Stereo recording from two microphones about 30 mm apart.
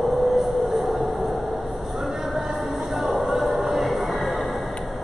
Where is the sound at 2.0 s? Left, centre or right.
Centre.